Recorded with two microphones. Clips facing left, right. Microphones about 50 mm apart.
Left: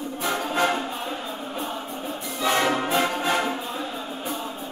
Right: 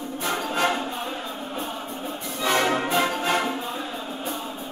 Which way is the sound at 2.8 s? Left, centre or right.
Centre.